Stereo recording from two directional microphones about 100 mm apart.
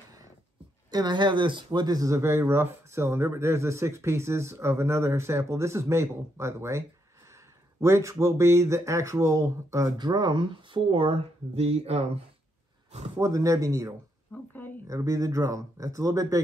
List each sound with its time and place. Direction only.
0.8 s speech: 45° right (ahead or behind)
9.9 s speech: 45° right (ahead or behind); by 12.1 s 90° right
13.2 s speech: 35° right (ahead or behind)
14.3 s a sound: 20° left (ahead or behind)
14.9 s speech: 35° right (ahead or behind)